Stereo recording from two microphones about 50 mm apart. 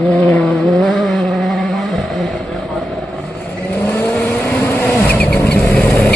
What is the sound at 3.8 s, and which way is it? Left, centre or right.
Vehicle, left.